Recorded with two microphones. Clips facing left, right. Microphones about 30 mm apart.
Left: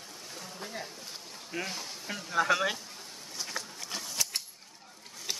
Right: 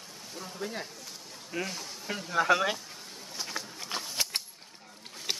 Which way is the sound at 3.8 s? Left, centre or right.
Right.